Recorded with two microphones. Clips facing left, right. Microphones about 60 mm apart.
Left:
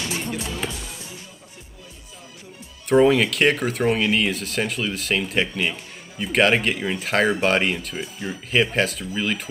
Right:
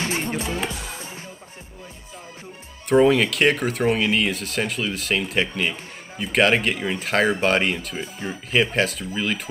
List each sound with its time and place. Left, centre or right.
0.0 s music: right
0.6 s music: centre
2.9 s speech: centre